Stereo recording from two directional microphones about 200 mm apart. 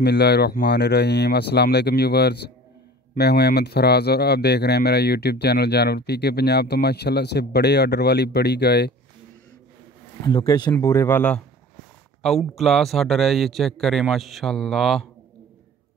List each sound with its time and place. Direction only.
0.0 s speech: 55° left (ahead or behind)
10.2 s a man's voice: 20° left (ahead or behind); by 15.0 s centre (ahead or behind)